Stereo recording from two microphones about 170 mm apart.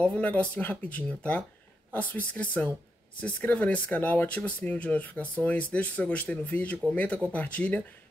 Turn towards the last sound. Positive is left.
turn(degrees=10)  # may be behind; listen again after turning